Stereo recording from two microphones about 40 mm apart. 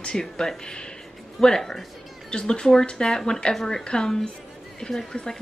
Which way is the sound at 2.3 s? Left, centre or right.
Left.